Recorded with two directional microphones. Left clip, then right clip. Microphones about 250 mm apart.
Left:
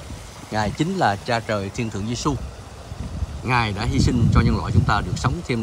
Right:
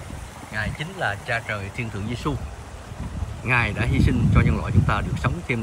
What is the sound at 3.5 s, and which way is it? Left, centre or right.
Speech, centre.